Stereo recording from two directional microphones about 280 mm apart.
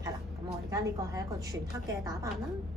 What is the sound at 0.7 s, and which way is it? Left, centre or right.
Speech, centre.